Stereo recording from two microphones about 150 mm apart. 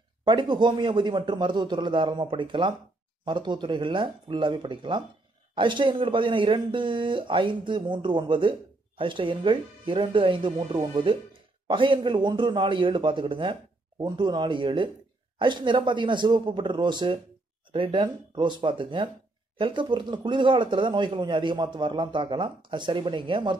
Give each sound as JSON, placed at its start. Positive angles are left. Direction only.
{"t": 0.2, "sound": "speech", "side_deg": -30}